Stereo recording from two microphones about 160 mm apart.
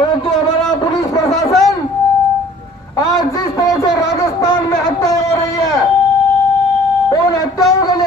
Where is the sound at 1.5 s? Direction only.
Centre (ahead or behind).